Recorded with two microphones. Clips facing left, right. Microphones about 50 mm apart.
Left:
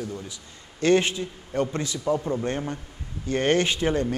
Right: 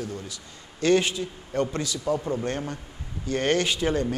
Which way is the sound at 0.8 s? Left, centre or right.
Left.